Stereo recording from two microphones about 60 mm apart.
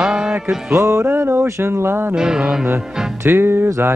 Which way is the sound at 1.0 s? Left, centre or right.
Right.